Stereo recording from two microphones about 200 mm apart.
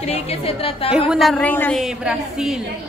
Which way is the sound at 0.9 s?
5° right (ahead or behind).